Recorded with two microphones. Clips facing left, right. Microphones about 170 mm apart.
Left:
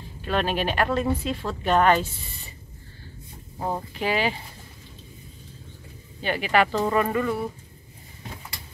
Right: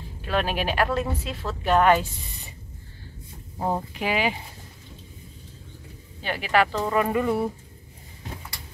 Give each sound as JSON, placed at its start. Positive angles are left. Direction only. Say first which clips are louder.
{"t": 0.2, "sound": "speech", "louder": "left 1 dB", "side_deg": -5}
{"t": 3.5, "sound": "speech", "louder": "right 2 dB", "side_deg": -15}
{"t": 6.2, "sound": "speech", "louder": "left 1 dB", "side_deg": 0}
{"t": 7.1, "sound": "speech", "louder": "right 2 dB", "side_deg": -20}